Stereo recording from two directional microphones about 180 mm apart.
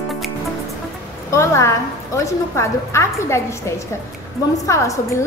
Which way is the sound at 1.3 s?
15° left (ahead or behind).